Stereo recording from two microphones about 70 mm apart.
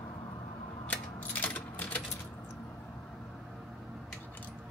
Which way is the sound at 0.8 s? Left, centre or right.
Left.